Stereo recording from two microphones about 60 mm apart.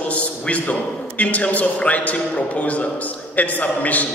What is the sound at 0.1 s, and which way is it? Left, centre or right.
A man's voice, left.